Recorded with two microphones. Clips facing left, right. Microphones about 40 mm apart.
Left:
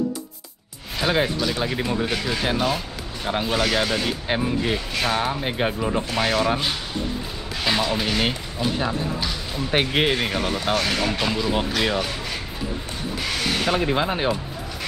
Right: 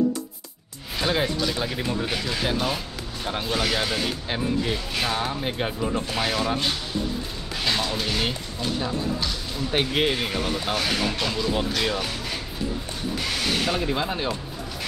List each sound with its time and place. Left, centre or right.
0.9 s speech: centre
4.3 s speech: centre
6.1 s speech: centre
13.2 s mechanisms: centre
13.7 s speech: left